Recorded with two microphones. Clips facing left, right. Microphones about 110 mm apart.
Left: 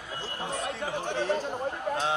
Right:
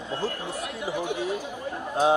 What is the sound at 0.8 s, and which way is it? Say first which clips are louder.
Speech: right 5 dB; 15° right (ahead or behind).